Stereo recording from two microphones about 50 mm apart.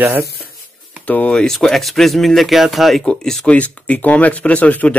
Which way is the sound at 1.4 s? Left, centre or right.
Centre.